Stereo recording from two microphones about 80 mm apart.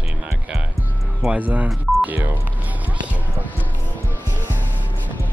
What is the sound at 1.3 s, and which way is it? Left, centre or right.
Speech, centre.